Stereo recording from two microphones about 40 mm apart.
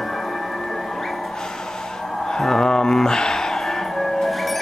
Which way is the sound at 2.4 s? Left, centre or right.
Centre.